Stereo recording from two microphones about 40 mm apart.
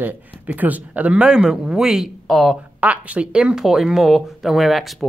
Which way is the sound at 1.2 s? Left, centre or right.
Right.